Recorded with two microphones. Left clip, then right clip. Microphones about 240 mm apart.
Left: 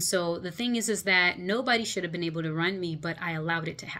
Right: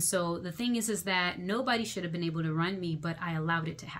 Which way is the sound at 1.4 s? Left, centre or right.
Centre.